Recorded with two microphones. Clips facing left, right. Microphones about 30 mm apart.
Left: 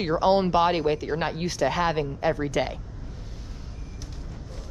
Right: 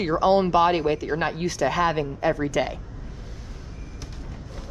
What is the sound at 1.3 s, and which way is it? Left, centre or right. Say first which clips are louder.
Speech: right 1 dB; centre.